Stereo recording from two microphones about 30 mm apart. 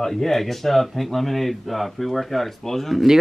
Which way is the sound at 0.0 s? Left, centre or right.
Centre.